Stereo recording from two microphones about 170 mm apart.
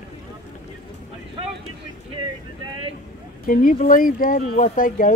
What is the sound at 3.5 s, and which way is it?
Speech, 55° left (ahead or behind).